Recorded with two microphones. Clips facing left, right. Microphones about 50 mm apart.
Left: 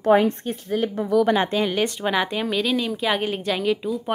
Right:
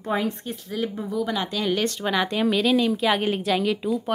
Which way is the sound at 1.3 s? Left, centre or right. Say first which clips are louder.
Left 6 dB; left.